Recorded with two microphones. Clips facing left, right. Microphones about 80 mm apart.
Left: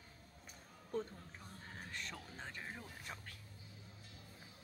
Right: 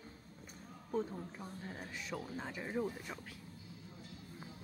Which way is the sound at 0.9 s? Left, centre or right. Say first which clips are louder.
Right 4 dB; centre.